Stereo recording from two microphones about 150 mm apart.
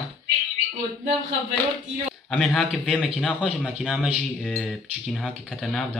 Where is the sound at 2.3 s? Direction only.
Centre (ahead or behind).